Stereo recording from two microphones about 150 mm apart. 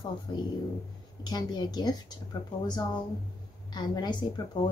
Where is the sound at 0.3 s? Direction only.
30° left (ahead or behind).